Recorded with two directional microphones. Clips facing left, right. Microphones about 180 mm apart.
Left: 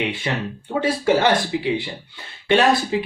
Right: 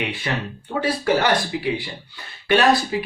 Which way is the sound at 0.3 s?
20° left (ahead or behind).